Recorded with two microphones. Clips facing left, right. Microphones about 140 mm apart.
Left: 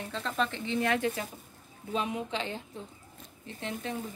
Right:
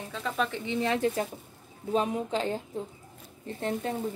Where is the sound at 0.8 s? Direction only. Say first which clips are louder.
Right 2 dB; 30° right (ahead or behind).